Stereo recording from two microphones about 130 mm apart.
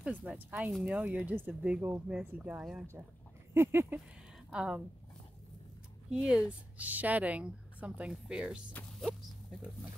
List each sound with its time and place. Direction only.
0.0 s a woman's voice: 10° right (ahead or behind)
4.5 s a woman's voice: 5° right (ahead or behind)
6.0 s a woman's voice: 5° right (ahead or behind)